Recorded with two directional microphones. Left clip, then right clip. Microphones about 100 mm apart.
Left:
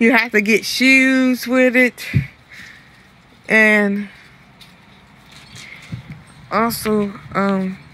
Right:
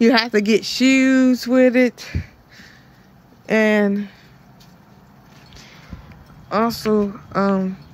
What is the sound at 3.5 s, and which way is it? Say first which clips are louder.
Speech: left 4 dB; 20° right (ahead or behind).